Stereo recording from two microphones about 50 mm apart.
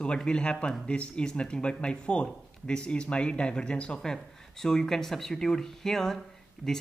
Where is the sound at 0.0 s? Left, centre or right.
Centre.